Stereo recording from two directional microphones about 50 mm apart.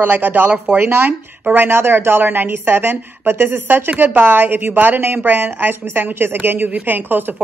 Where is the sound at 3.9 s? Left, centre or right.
Right.